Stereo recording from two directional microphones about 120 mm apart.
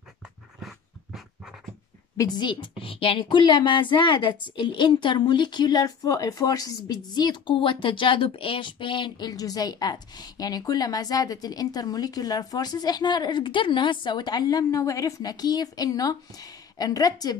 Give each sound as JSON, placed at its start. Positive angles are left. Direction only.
{"t": 0.6, "sound": "dog", "side_deg": 0}
{"t": 2.1, "sound": "a woman's voice", "side_deg": 35}